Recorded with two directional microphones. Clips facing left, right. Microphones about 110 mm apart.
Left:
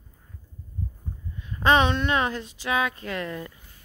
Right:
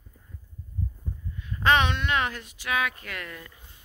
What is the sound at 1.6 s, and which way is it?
Speech, 30° left (ahead or behind).